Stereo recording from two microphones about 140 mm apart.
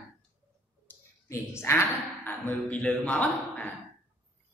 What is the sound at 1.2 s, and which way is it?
A woman's voice, 20° left (ahead or behind).